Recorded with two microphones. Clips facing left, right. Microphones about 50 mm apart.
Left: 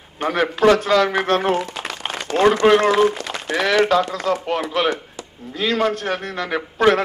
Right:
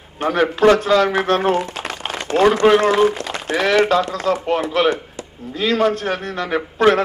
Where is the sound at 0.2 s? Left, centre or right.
Centre.